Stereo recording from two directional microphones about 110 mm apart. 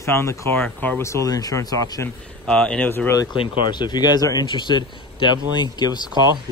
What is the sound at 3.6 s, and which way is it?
Speech, 45° left (ahead or behind).